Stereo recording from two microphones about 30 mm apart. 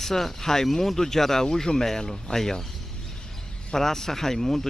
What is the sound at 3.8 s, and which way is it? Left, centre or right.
Speech, centre.